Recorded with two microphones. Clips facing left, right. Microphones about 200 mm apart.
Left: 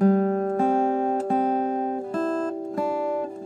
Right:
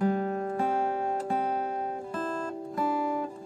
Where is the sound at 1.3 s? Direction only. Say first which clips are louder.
Left 7 dB; 40° left (ahead or behind).